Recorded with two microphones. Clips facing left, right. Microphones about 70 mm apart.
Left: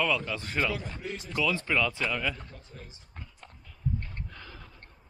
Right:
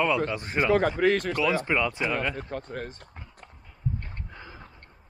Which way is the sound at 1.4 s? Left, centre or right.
Right.